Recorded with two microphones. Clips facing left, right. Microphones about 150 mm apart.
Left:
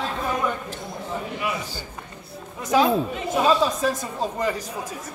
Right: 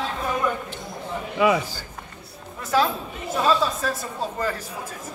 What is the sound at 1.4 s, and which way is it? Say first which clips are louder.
Speech: right 12 dB; 90° right.